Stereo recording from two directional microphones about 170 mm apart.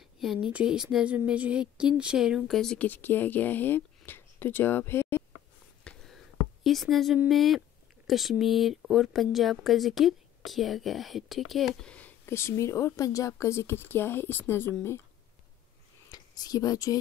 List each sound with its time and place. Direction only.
0.0 s speech: centre (ahead or behind); by 5.2 s 15° left (ahead or behind)
5.9 s a sound: centre (ahead or behind)
7.2 s speech: centre (ahead or behind)
16.1 s speech: 25° left (ahead or behind)